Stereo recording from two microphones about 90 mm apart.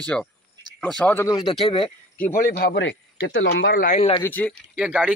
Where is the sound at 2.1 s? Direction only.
15° left (ahead or behind).